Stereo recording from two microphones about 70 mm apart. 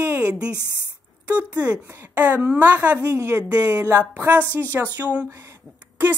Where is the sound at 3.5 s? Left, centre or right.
Right.